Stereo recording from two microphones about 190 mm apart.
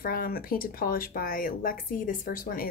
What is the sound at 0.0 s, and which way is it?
A woman's voice, 50° left (ahead or behind).